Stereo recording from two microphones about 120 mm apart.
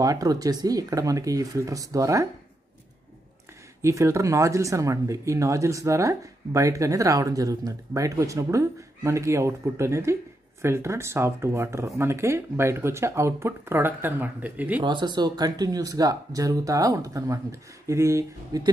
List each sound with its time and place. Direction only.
0.0 s speech: 30° right (ahead or behind)
3.8 s speech: 25° right (ahead or behind)
14.8 s speech: 40° right (ahead or behind)